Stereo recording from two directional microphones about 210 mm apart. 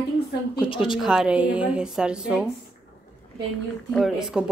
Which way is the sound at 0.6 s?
25° left (ahead or behind).